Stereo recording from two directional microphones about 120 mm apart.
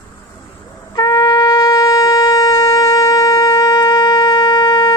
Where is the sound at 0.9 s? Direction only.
35° left (ahead or behind).